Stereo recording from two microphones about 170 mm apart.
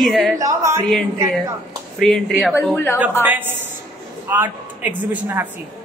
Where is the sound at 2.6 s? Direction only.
10° left (ahead or behind).